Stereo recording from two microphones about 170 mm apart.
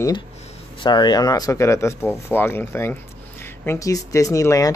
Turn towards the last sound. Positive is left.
turn(degrees=20)  # may be behind; listen again after turning